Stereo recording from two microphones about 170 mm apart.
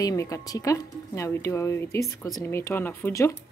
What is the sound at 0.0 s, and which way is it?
Speech, 20° left (ahead or behind).